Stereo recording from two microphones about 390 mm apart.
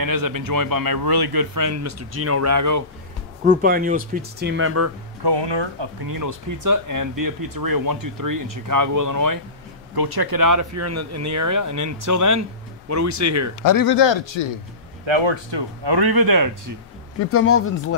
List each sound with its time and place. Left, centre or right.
0.0 s speech: right
3.4 s speech: right
5.2 s speech: right
6.1 s speech: right
9.9 s speech: right
13.6 s speech: left
15.5 s speech: right
17.3 s speech: left